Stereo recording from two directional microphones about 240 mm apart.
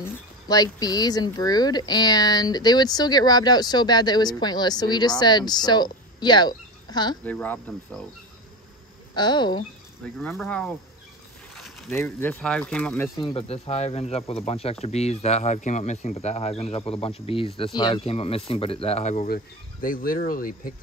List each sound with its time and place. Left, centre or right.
0.0 s speech: centre
7.2 s cricket: centre
9.1 s speech: centre
10.0 s cricket: centre
11.5 s speech: centre
13.2 s speech: left